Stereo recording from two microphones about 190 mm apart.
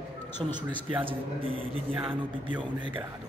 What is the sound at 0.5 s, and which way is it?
Speech, 25° right (ahead or behind).